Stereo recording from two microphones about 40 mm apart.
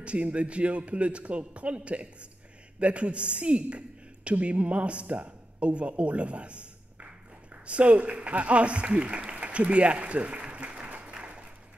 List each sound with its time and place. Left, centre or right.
0.0 s a man's voice: right